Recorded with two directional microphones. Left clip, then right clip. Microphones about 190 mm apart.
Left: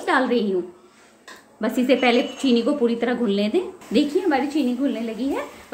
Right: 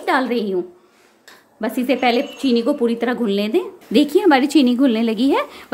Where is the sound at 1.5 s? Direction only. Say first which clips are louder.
Even; 25° right (ahead or behind).